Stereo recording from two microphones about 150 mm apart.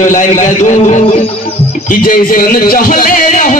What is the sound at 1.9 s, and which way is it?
Speech, 70° left (ahead or behind).